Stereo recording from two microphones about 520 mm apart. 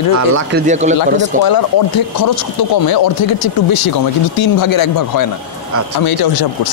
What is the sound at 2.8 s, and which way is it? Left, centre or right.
Speech, left.